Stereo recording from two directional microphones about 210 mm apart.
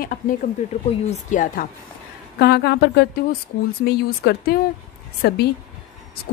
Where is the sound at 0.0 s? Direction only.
40° left (ahead or behind).